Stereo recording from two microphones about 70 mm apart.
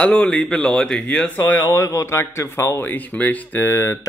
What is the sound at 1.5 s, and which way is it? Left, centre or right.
Mantra, left.